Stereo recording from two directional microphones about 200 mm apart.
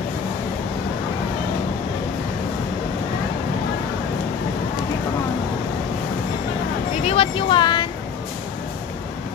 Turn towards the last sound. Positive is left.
turn(degrees=25)  # may be behind; listen again after turning